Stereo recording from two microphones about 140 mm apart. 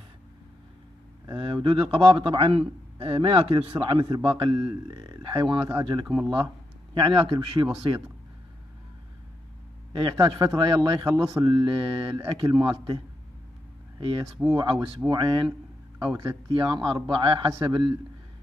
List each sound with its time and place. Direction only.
1.3 s speech: 40° right (ahead or behind)
4.9 s speech: 25° right (ahead or behind)
6.0 s speech: 20° right (ahead or behind)
6.9 s speech: 35° right (ahead or behind)
9.9 s speech: 35° right (ahead or behind)